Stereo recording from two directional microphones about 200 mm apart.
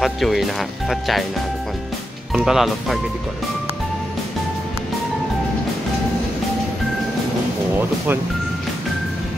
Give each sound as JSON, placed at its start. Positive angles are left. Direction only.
{"t": 0.0, "sound": "speech", "side_deg": 0}
{"t": 2.3, "sound": "speech", "side_deg": 0}